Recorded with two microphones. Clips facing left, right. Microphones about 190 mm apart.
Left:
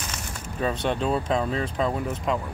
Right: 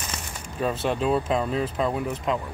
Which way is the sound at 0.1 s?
5° right (ahead or behind).